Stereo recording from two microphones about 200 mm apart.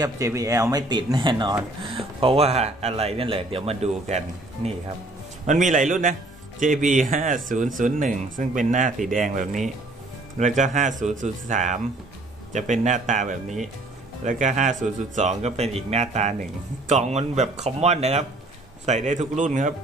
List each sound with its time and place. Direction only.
0.0 s speech: 15° right (ahead or behind); by 4.2 s 30° right (ahead or behind)
5.5 s speech: 40° right (ahead or behind)